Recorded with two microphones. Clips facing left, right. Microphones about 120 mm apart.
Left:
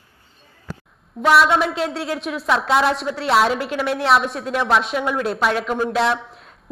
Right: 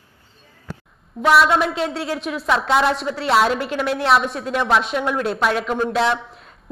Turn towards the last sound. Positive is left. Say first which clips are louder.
# even
turn(degrees=0)  # may be behind; listen again after turning